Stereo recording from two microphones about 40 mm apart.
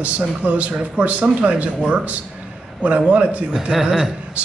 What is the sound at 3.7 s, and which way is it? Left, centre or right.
Speech, centre.